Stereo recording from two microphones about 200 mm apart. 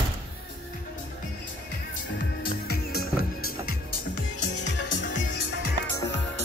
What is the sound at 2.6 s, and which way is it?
Music, 50° left (ahead or behind).